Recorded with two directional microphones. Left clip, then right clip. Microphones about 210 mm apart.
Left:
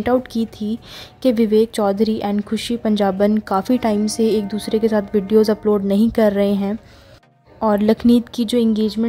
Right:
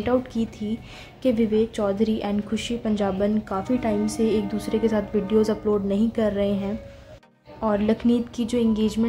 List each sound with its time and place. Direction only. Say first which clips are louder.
0.0 s speech: left 5 dB; 35° left (ahead or behind)